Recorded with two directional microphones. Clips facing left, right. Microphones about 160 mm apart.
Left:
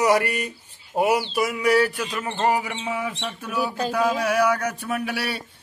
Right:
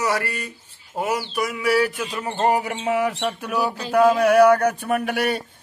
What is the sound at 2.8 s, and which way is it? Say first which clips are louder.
Bird: right 6 dB; 75° right (ahead or behind).